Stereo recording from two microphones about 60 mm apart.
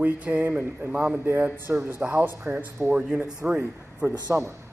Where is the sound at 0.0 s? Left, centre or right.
Right.